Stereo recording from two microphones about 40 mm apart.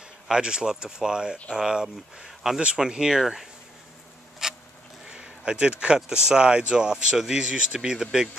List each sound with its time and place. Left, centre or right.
0.3 s speech: centre
4.4 s a sound: centre
5.9 s speech: centre